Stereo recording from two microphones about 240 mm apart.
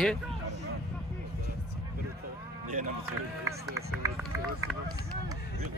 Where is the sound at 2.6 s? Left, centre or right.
Right.